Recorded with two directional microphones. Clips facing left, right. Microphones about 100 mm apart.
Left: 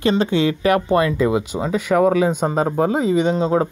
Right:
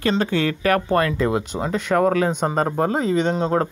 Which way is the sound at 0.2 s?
20° left (ahead or behind).